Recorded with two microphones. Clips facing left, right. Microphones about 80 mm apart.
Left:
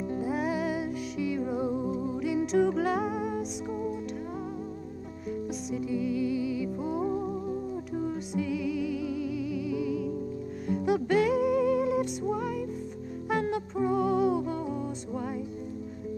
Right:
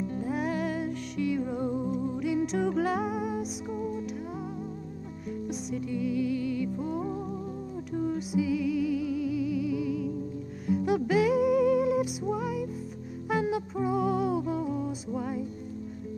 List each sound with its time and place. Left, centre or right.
0.0 s music: centre
0.3 s music: centre
5.5 s music: centre